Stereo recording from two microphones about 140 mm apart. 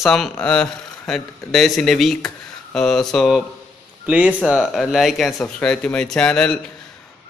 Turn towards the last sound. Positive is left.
turn(degrees=5)  # may be behind; listen again after turning